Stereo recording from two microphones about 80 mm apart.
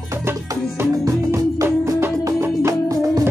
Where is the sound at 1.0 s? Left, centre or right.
Right.